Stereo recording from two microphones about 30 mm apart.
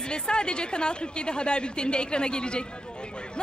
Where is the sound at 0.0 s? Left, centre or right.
Left.